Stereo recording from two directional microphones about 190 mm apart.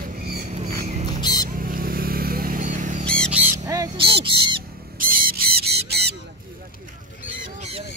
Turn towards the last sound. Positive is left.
turn(degrees=-30)  # may be behind; listen again after turning